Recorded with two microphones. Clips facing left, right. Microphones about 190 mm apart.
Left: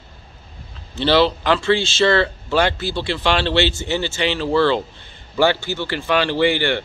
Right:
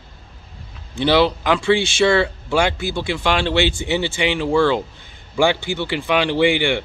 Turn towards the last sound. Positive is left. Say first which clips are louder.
# right 1 dB
turn(degrees=-15)  # may be behind; listen again after turning